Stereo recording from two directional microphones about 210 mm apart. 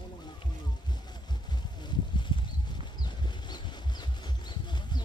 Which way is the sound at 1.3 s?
20° left (ahead or behind).